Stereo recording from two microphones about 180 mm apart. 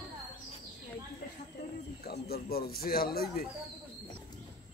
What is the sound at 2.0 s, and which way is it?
Speech, 60° left (ahead or behind).